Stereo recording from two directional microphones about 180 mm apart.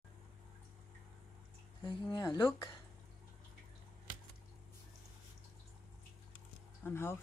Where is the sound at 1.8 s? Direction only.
25° left (ahead or behind).